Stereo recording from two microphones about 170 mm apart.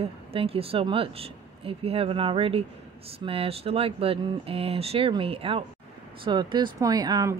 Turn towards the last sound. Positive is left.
turn(degrees=-25)  # may be behind; listen again after turning